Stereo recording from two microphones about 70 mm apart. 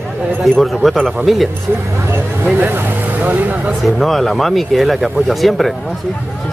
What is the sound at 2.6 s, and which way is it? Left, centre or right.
Speech, right.